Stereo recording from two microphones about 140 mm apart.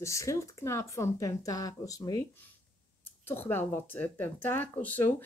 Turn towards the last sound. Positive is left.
turn(degrees=10)  # may be behind; listen again after turning